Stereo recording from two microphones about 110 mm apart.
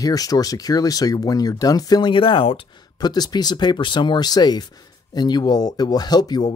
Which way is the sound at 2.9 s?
40° left (ahead or behind).